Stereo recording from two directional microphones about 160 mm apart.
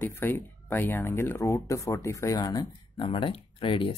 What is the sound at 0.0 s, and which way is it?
Speech, 15° left (ahead or behind).